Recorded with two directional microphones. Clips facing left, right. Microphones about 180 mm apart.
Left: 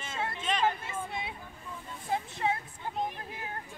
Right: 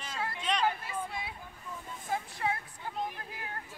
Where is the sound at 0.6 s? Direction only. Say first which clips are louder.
Left 1 dB; 25° left (ahead or behind).